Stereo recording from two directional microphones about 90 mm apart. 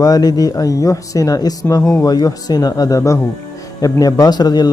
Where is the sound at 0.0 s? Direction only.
45° left (ahead or behind).